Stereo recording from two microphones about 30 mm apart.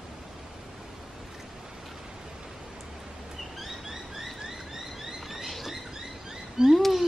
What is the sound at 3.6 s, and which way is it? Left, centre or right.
Bird, centre.